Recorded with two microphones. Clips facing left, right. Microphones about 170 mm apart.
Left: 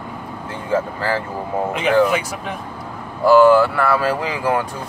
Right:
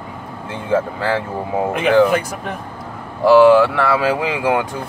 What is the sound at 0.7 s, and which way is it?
Speech, 70° right (ahead or behind).